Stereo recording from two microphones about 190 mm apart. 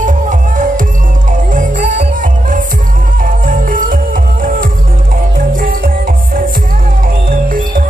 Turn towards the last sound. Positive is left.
turn(degrees=-45)  # may be behind; listen again after turning